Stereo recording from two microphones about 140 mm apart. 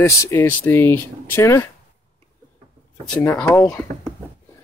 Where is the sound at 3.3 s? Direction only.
10° left (ahead or behind).